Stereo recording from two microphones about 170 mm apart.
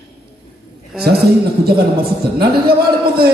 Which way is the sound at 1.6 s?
65° right (ahead or behind).